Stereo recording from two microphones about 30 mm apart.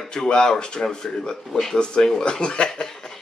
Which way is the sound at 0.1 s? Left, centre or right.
Left.